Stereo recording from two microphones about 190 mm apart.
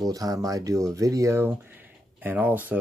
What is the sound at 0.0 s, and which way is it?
Speech, 20° right (ahead or behind).